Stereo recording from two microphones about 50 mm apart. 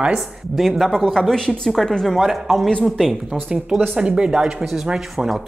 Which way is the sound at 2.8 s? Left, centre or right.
Centre.